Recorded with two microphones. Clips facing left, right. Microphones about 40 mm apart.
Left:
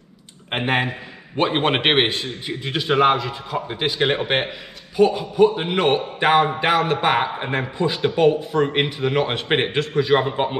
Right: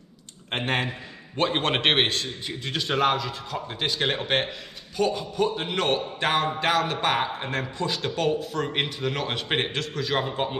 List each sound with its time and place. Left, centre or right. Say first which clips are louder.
0.5 s a man's voice: left 5 dB; centre